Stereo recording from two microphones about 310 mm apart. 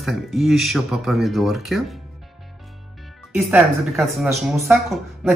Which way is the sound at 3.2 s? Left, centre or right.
Centre.